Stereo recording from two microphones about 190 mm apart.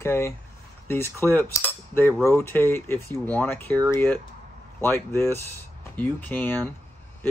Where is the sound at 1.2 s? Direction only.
10° left (ahead or behind).